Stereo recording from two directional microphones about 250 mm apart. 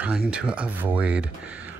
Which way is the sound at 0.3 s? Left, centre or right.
Centre.